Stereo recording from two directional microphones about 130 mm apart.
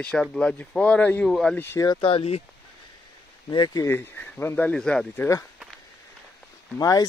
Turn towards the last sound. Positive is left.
turn(degrees=30)  # may be behind; listen again after turning